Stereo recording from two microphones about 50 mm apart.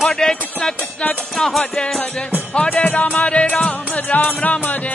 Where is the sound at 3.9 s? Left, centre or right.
Left.